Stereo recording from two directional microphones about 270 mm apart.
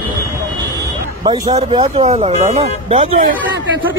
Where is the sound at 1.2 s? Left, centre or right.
Centre.